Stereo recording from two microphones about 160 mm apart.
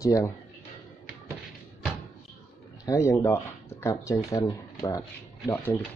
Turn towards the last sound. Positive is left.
turn(degrees=20)  # may be behind; listen again after turning